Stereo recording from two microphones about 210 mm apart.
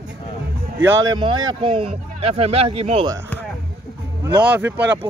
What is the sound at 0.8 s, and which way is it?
Speech, 20° right (ahead or behind).